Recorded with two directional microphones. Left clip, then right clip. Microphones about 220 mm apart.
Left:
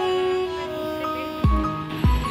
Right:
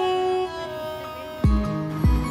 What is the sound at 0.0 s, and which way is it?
Music, centre (ahead or behind).